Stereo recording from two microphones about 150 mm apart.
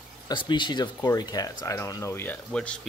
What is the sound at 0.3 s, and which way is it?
Speech, 30° left (ahead or behind).